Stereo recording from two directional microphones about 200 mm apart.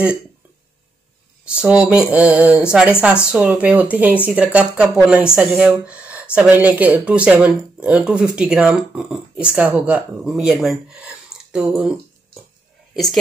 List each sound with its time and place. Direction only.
1.5 s speech: 5° right (ahead or behind)
12.9 s speech: centre (ahead or behind)